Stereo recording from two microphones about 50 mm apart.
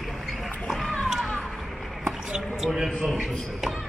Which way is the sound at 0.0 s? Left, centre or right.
Centre.